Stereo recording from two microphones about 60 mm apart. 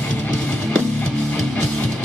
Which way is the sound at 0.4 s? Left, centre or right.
Centre.